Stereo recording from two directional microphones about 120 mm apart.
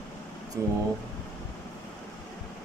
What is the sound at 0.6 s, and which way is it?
Speech, 25° right (ahead or behind).